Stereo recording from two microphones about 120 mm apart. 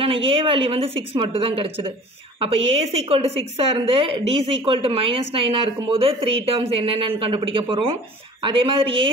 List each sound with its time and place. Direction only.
0.0 s a woman's voice: 50° right (ahead or behind)